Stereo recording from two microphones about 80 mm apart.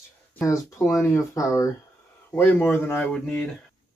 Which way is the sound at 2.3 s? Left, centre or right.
Left.